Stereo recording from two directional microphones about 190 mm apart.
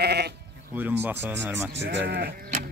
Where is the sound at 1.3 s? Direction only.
70° right (ahead or behind).